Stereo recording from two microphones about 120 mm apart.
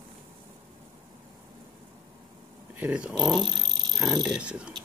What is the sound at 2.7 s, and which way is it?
Speech, 10° right (ahead or behind).